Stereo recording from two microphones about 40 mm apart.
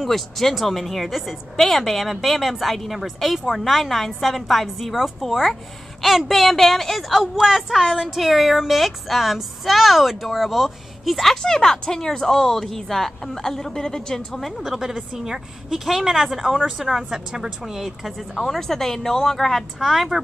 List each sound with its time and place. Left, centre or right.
0.0 s a woman's voice: centre
7.2 s a woman's voice: centre
11.4 s a woman's voice: centre
14.8 s a woman's voice: centre
18.3 s a woman's voice: centre